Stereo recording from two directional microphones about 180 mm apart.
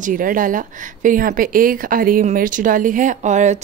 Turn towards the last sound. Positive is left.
turn(degrees=-40)  # may be behind; listen again after turning